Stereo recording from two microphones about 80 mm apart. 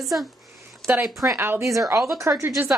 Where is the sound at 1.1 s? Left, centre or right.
Right.